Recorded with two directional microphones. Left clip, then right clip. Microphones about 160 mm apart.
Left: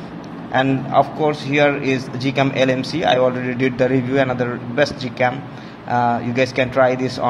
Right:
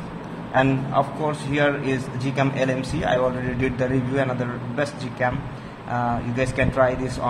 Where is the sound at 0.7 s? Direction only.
20° left (ahead or behind).